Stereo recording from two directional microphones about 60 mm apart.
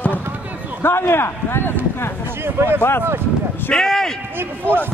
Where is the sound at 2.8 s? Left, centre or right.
Left.